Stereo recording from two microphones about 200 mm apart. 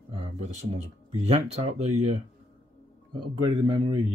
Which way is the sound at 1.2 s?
30° right (ahead or behind).